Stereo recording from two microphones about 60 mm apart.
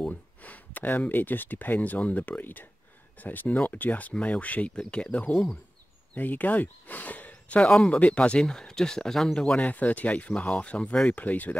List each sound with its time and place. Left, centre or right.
0.1 s speech: left; by 9.4 s centre
9.6 s speech: left